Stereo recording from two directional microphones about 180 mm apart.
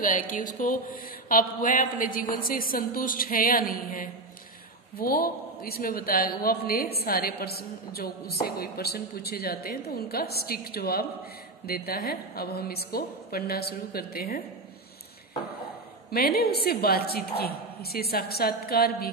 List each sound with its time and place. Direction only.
0.0 s mantra: 45° left (ahead or behind)
4.9 s a man's voice: 55° left (ahead or behind)
16.1 s a man's voice: 60° left (ahead or behind)